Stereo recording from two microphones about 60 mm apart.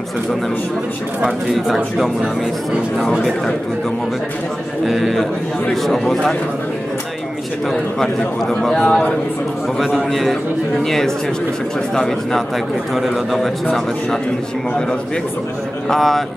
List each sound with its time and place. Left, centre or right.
1.2 s speech: centre
4.8 s speech: centre
7.7 s a man's voice: centre
10.8 s a man's voice: centre
15.9 s speech: centre